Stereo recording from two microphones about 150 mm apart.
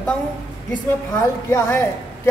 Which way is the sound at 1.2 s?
20° left (ahead or behind).